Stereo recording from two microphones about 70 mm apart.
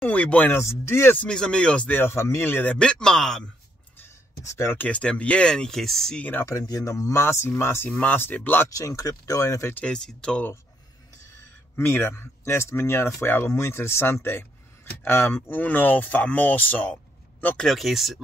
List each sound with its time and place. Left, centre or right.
0.0 s a sound: centre
0.5 s speech: left
1.1 s speech: centre
2.0 s speech: left
2.7 s speech: centre
4.5 s speech: left
4.7 s speech: centre
6.1 s speech: left
6.6 s speech: left
7.9 s speech: left
8.6 s speech: left
9.8 s speech: centre
11.7 s speech: left
17.6 s speech: centre